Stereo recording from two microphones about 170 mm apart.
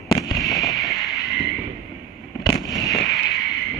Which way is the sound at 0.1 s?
25° left (ahead or behind).